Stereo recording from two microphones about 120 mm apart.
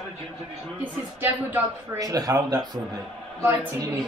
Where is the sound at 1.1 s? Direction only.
20° right (ahead or behind).